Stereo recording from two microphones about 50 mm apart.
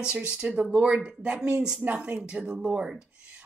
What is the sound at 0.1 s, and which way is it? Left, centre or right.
A woman's voice, right.